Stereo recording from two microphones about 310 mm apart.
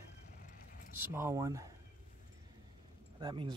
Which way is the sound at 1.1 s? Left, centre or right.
Centre.